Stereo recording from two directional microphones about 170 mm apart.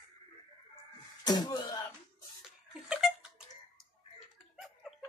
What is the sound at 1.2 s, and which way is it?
Slap, 25° left (ahead or behind).